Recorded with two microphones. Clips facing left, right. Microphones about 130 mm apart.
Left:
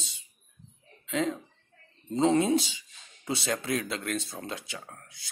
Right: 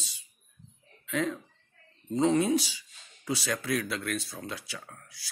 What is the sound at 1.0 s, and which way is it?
Speech, 20° left (ahead or behind).